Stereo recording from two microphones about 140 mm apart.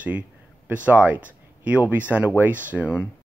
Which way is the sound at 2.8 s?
20° left (ahead or behind).